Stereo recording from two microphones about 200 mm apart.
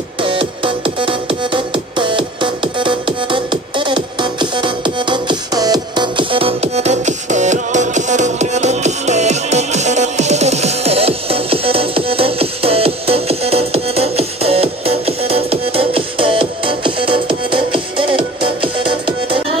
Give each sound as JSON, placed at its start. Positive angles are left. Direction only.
{"t": 0.2, "sound": "music", "side_deg": -25}